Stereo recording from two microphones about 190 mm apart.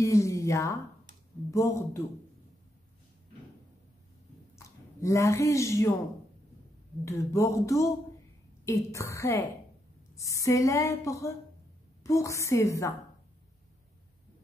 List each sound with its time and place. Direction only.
0.0 s a woman's voice: 15° left (ahead or behind)
4.6 s speech: 15° left (ahead or behind)
7.1 s a woman's voice: 15° left (ahead or behind)